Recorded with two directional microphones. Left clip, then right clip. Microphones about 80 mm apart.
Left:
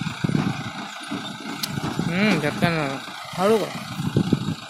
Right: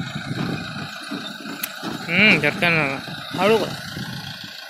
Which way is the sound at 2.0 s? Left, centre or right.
Centre.